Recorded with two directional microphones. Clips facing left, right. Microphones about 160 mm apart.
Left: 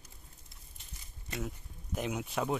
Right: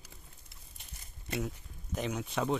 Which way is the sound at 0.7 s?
60° right (ahead or behind).